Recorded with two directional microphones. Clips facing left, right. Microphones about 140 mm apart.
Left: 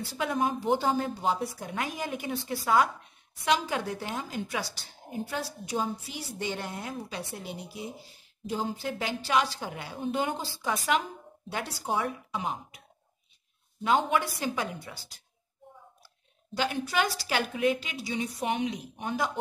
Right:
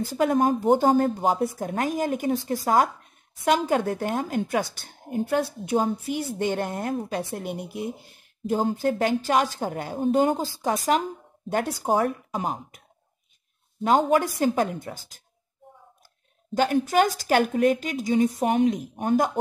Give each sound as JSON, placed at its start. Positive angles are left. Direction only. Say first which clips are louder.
{"t": 0.0, "sound": "a woman's voice", "louder": "right 8 dB", "side_deg": -45}
{"t": 13.8, "sound": "a woman's voice", "louder": "right 6 dB", "side_deg": -40}
{"t": 16.5, "sound": "a woman's voice", "louder": "right 8 dB", "side_deg": -45}